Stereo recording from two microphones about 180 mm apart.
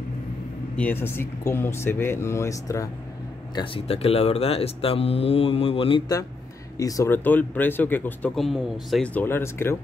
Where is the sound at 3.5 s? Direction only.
30° left (ahead or behind); by 9.8 s 15° left (ahead or behind).